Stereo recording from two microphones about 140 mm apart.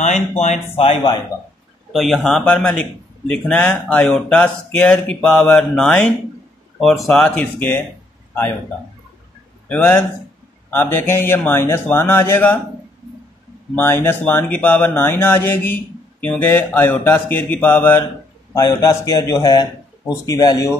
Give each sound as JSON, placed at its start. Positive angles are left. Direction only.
{"t": 0.4, "sound": "speech", "side_deg": 50}
{"t": 1.9, "sound": "a man's voice", "side_deg": 0}
{"t": 9.7, "sound": "speech", "side_deg": 15}
{"t": 13.7, "sound": "speech", "side_deg": 15}
{"t": 18.5, "sound": "a man's voice", "side_deg": 25}